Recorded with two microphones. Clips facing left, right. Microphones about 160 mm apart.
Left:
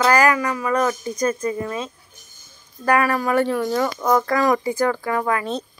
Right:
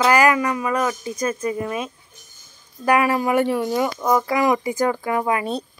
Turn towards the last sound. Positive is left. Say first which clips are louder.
# right 1 dB
turn(degrees=-20)  # may be behind; listen again after turning